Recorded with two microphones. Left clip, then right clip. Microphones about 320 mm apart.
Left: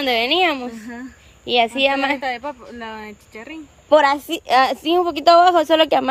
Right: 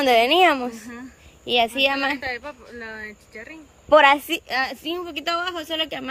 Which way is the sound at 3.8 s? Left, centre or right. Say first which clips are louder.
Even; centre.